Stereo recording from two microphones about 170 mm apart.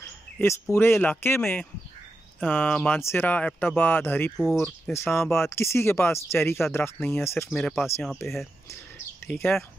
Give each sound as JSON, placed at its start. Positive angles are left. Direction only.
{"t": 0.4, "sound": "speech", "side_deg": 15}
{"t": 7.5, "sound": "speech", "side_deg": 5}
{"t": 9.2, "sound": "speech", "side_deg": 10}